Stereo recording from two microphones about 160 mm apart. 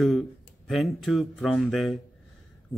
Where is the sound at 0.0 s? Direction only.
Centre (ahead or behind).